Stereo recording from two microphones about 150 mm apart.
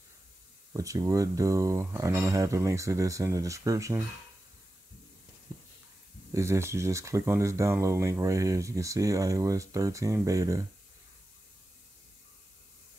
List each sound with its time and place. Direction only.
0.7 s speech: 20° right (ahead or behind)
6.3 s speech: 20° right (ahead or behind)